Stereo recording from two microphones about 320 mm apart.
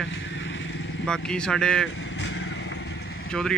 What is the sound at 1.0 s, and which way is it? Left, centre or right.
Speech, centre.